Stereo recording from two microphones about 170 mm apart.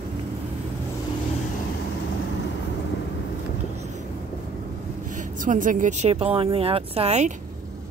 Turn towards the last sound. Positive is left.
turn(degrees=-40)  # may be behind; listen again after turning